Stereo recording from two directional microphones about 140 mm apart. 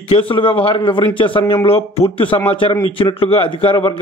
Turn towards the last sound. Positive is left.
turn(degrees=40)  # may be behind; listen again after turning